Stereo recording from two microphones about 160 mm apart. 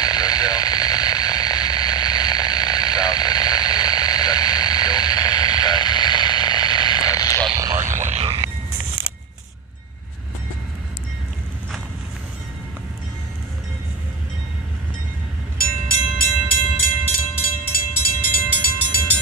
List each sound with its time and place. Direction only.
0.0 s static: 25° left (ahead or behind)
7.5 s frog: 20° right (ahead or behind)
7.8 s a sound: 50° right (ahead or behind)
15.5 s train: 65° left (ahead or behind)
18.3 s train: 65° left (ahead or behind)